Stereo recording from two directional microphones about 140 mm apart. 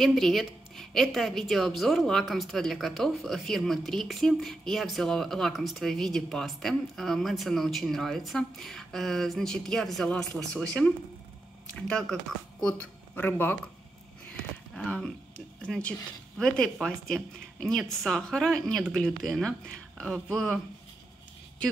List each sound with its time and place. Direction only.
0.0 s a woman's voice: centre (ahead or behind)
14.8 s a woman's voice: 5° left (ahead or behind)